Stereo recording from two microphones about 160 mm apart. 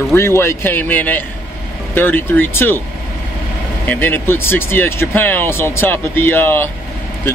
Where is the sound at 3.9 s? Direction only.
15° left (ahead or behind).